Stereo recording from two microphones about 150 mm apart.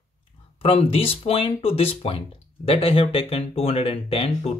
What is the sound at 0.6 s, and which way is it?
Speech, 40° left (ahead or behind).